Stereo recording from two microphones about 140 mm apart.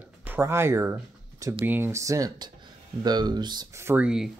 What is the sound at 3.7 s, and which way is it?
Speech, 15° right (ahead or behind).